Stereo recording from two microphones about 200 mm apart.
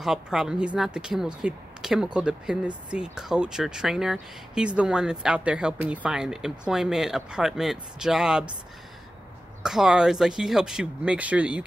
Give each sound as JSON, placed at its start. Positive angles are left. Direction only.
{"t": 0.0, "sound": "speech", "side_deg": 0}
{"t": 9.6, "sound": "speech", "side_deg": -5}